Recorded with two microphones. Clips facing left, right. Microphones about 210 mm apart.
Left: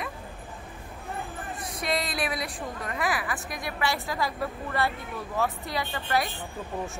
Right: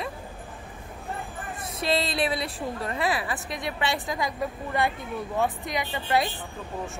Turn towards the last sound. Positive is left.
turn(degrees=-20)  # may be behind; listen again after turning